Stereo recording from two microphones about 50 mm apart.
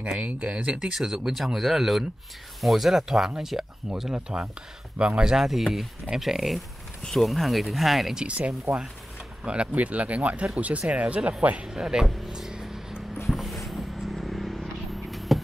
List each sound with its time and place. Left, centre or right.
0.0 s speech: right
0.9 s speech: centre
5.3 s speech: centre
8.3 s speech: right
11.6 s music: centre
13.3 s a sound: centre
13.7 s vehicle: centre
15.0 s a sound: centre